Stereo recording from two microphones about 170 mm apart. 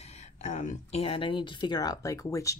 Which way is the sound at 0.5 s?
45° left (ahead or behind).